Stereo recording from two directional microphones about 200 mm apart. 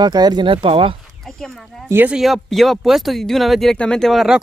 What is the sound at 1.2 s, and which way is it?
Speech, centre (ahead or behind).